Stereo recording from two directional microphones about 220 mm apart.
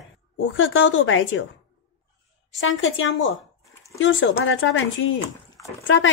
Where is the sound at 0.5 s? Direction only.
60° left (ahead or behind).